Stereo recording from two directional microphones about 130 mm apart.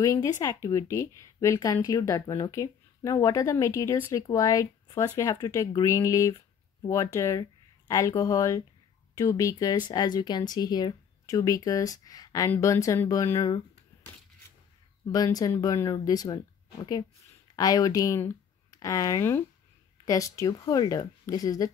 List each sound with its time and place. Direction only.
0.0 s speech: 25° left (ahead or behind)
15.0 s speech: 30° left (ahead or behind)
17.6 s speech: 30° left (ahead or behind)